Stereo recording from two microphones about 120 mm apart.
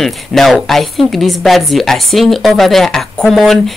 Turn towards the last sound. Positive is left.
turn(degrees=0)  # may be behind; listen again after turning